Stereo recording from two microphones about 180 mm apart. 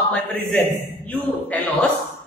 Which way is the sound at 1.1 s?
10° left (ahead or behind).